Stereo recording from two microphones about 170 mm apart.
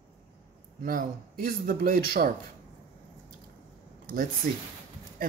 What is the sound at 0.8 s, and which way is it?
Speech, 55° right (ahead or behind).